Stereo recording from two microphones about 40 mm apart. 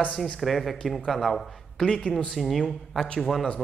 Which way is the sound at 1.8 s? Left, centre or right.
Left.